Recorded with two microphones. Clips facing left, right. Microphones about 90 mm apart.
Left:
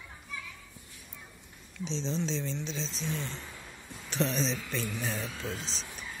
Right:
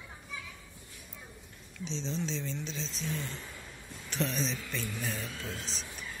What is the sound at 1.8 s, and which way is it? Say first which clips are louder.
Speech: left 3 dB; 30° left (ahead or behind).